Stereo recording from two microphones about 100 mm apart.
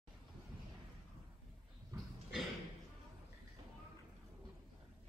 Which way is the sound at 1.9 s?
35° right (ahead or behind).